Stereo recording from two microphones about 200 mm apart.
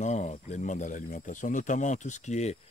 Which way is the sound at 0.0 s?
35° left (ahead or behind).